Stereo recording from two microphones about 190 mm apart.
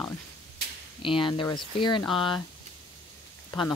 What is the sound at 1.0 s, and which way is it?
Speech, 25° left (ahead or behind).